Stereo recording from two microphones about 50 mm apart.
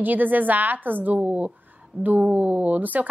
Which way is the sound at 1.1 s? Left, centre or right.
Right.